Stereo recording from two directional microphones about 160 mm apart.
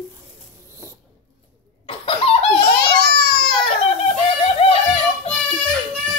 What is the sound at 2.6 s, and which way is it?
Crying, 75° left (ahead or behind).